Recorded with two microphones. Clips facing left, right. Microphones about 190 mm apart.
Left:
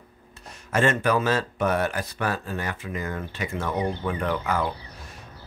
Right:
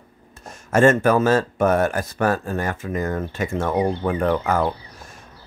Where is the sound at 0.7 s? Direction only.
45° right (ahead or behind).